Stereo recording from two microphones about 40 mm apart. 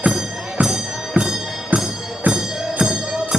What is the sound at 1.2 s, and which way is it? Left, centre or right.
Music, right.